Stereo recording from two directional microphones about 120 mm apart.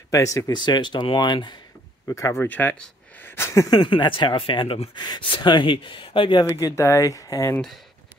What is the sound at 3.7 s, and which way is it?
Speech, 40° left (ahead or behind).